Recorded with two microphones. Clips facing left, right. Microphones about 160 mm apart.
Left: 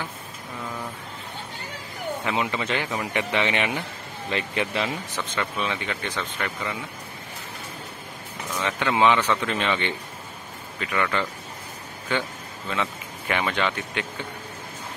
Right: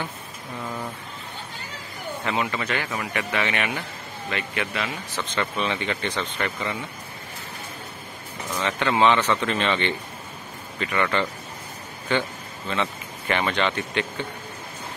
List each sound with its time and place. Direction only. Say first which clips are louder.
2.2 s a man's voice: right 1 dB; 15° left (ahead or behind)
5.1 s speech: right 1 dB; 5° left (ahead or behind)
8.6 s speech: right 1 dB; 10° left (ahead or behind)
12.6 s speech: right 1 dB; 5° left (ahead or behind)